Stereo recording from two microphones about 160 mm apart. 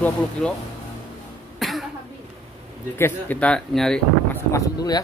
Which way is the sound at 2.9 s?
10° left (ahead or behind).